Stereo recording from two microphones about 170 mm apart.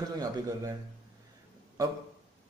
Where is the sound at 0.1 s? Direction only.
20° right (ahead or behind).